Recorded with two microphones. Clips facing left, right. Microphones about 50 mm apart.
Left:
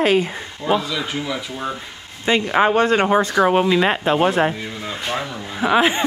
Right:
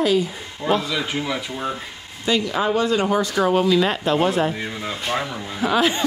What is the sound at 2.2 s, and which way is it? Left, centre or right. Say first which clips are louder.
A woman's voice: left 4 dB; left.